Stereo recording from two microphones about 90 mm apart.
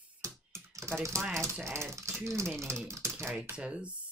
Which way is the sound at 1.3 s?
30° right (ahead or behind).